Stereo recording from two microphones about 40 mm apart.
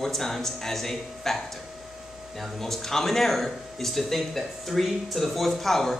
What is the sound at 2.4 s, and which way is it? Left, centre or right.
Speech, centre.